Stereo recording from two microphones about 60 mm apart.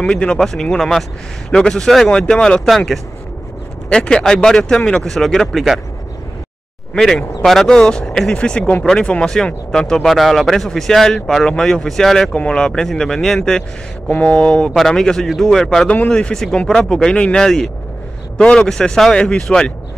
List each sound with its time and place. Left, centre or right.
0.0 s speech: centre
2.6 s speech: centre
6.9 s speech: centre
15.9 s speech: left